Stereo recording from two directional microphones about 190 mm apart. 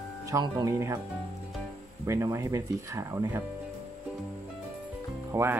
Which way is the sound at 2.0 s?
15° right (ahead or behind).